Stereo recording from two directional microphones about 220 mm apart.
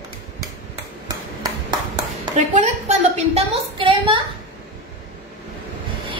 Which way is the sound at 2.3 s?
35° right (ahead or behind).